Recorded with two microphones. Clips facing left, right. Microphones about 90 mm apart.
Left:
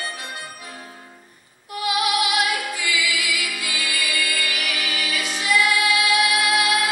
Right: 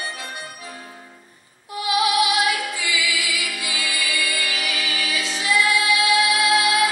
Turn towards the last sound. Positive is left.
turn(degrees=-20)  # may be behind; listen again after turning